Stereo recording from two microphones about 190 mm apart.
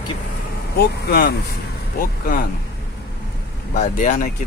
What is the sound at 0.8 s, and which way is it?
Speech, 55° left (ahead or behind).